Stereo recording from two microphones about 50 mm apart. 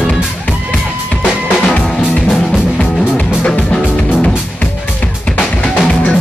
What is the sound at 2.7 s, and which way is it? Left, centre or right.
Music, centre.